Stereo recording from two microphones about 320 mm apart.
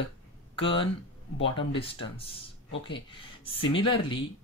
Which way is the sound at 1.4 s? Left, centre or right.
Centre.